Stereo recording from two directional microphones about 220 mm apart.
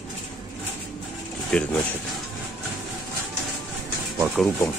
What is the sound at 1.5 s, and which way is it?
Speech, 5° left (ahead or behind).